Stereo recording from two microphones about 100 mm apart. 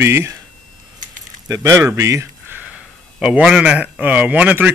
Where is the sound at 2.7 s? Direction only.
10° right (ahead or behind).